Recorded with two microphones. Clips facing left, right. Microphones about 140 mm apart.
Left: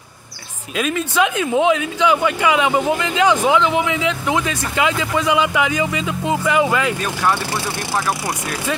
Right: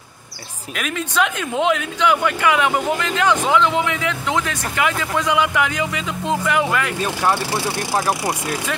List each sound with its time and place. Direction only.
0.9 s speech: 10° left (ahead or behind)